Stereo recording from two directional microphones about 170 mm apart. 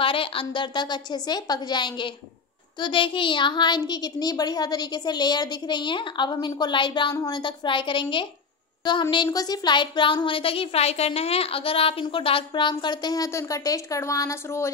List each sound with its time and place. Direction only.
0.0 s speech: 30° left (ahead or behind); by 14.7 s 15° left (ahead or behind)